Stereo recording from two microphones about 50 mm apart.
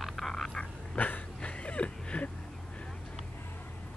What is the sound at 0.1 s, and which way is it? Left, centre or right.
Frog, centre.